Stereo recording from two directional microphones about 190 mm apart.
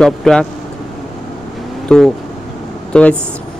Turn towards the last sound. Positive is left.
turn(degrees=5)  # may be behind; listen again after turning